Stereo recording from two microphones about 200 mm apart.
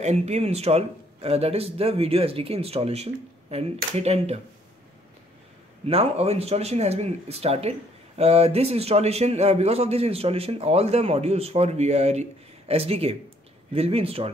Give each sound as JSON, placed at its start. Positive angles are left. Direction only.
{"t": 0.0, "sound": "a man's voice", "side_deg": -35}
{"t": 5.9, "sound": "a man's voice", "side_deg": -30}